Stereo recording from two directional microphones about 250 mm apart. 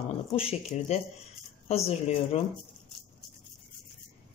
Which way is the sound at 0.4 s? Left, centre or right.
Left.